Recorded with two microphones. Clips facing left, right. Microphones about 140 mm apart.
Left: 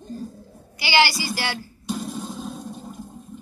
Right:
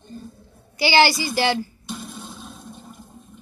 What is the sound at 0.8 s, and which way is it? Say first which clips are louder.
Speech: right 3 dB; 30° right (ahead or behind).